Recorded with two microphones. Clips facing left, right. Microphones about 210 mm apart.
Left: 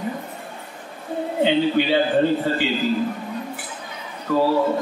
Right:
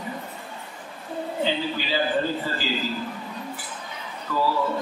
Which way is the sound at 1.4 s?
65° left (ahead or behind).